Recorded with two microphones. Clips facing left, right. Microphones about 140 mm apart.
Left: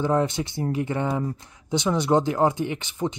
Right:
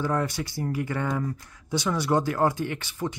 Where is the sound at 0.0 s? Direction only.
20° left (ahead or behind).